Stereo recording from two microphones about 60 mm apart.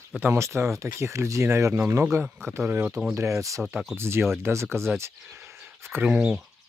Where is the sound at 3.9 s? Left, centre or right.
Right.